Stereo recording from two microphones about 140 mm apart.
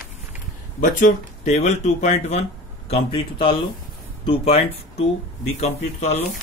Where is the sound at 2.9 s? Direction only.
40° left (ahead or behind).